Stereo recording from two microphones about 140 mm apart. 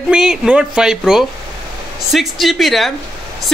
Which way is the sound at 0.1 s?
5° right (ahead or behind).